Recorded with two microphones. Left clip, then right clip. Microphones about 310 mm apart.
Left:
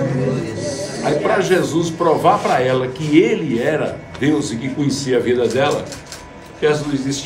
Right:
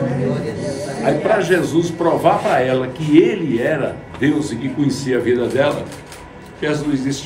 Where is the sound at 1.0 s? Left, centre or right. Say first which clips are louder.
Right 1 dB; centre.